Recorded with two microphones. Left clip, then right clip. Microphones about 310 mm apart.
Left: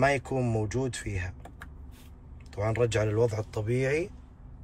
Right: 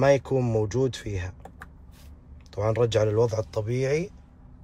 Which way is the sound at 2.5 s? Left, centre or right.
Centre.